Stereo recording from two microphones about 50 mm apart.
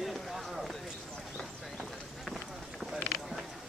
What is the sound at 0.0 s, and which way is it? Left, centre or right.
Run, centre.